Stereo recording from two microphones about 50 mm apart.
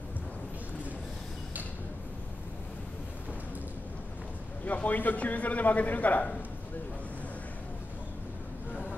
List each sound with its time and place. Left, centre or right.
4.6 s a man's voice: left